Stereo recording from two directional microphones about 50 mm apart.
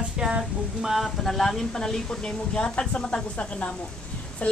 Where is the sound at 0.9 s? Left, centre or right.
Centre.